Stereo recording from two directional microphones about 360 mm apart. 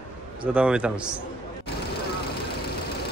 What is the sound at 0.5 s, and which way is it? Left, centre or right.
Speech, centre.